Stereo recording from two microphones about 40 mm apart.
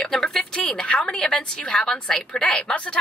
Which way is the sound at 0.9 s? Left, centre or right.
Left.